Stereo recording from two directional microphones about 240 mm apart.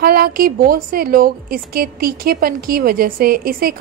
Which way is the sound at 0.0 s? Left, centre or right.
Right.